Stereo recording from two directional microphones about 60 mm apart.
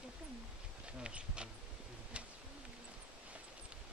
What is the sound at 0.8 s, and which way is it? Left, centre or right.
Speech, centre.